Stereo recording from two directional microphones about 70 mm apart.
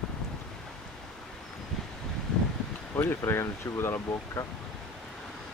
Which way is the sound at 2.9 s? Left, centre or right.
Left.